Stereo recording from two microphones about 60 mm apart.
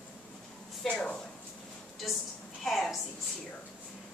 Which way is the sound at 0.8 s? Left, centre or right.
Centre.